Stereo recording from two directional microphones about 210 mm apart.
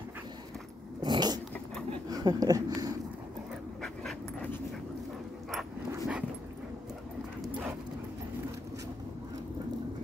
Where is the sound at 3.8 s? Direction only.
5° left (ahead or behind).